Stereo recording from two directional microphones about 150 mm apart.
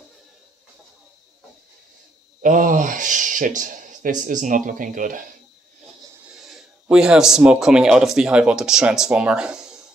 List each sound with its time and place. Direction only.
2.4 s speech: 60° right (ahead or behind)
6.3 s speech: 5° right (ahead or behind)